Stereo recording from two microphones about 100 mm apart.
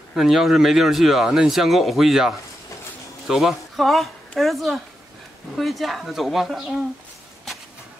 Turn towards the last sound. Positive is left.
turn(degrees=0)  # may be behind; listen again after turning